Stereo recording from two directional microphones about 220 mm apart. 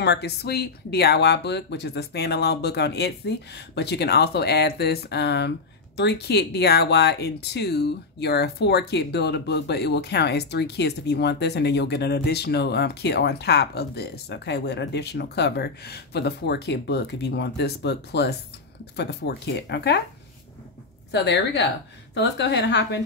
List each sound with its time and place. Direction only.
0.0 s speech: 50° left (ahead or behind)
21.1 s speech: 50° left (ahead or behind)